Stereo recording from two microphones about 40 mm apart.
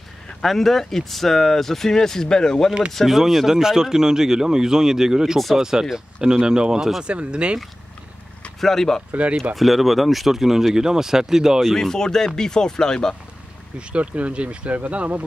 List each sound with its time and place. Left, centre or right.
0.4 s speech: centre
3.1 s speech: centre; by 7.5 s right
8.5 s speech: centre
9.1 s speech: right
9.6 s speech: centre
11.6 s speech: centre
13.7 s speech: right